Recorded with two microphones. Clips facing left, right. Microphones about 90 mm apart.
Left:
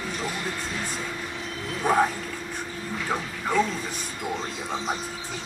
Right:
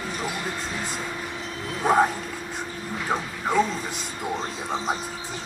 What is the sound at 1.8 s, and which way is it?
Speech, 15° right (ahead or behind).